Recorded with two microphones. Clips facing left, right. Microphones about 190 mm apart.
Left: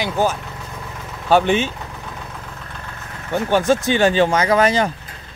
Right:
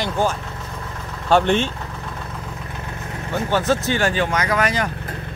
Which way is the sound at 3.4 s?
15° left (ahead or behind).